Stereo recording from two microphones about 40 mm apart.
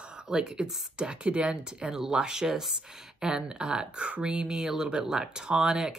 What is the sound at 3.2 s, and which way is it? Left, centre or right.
Speech, centre.